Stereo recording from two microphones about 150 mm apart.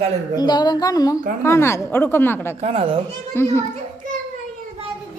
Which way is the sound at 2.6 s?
40° right (ahead or behind).